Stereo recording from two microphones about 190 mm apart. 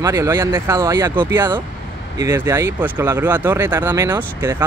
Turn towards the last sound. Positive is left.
turn(degrees=-10)  # may be behind; listen again after turning